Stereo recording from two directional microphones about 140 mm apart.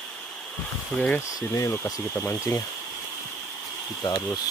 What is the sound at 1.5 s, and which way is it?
Speech, 20° left (ahead or behind).